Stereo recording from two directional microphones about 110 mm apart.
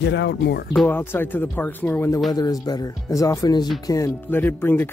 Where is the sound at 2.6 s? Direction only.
35° left (ahead or behind).